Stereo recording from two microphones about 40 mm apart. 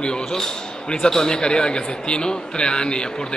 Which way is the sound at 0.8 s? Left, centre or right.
Centre.